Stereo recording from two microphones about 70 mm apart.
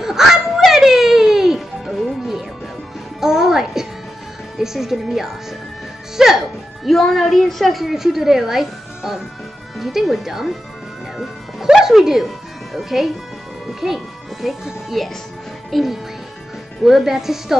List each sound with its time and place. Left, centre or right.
0.2 s a sound: centre
0.7 s music: centre
4.6 s speech: centre
11.1 s music: centre
13.7 s a child's voice: centre